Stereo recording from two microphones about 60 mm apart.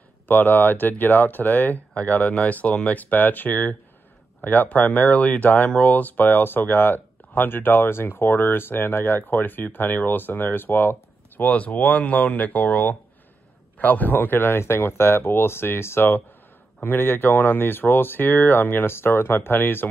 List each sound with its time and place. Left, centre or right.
0.3 s speech: left